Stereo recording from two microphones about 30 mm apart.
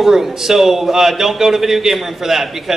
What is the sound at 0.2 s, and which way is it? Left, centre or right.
A man's voice, centre.